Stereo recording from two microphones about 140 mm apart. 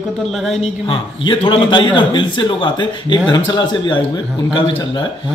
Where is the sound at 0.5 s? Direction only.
40° left (ahead or behind).